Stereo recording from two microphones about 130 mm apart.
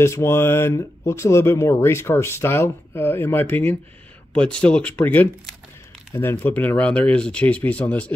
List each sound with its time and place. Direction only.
0.0 s speech: 20° left (ahead or behind)